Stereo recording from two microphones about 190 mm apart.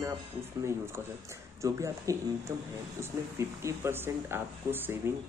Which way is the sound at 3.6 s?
15° right (ahead or behind).